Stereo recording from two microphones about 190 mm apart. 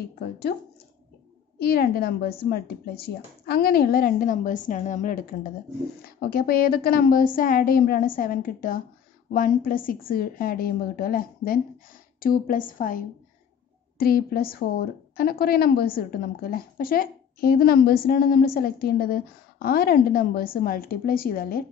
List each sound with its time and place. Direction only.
1.6 s a woman's voice: 55° left (ahead or behind)